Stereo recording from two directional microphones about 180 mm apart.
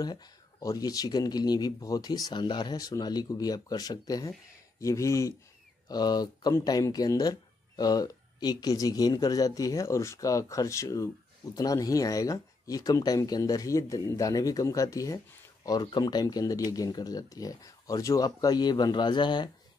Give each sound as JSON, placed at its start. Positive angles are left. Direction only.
{"t": 0.0, "sound": "speech", "side_deg": 20}